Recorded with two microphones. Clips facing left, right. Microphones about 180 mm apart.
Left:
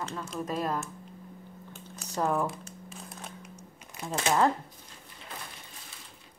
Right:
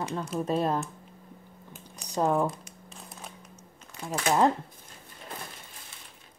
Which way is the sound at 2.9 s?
Centre (ahead or behind).